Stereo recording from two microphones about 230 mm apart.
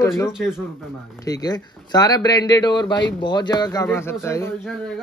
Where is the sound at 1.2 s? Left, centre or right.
Centre.